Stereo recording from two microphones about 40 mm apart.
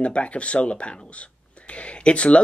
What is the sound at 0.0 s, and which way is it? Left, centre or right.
Speech, left.